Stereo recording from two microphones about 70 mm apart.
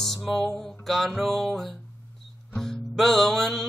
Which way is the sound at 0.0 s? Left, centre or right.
Centre.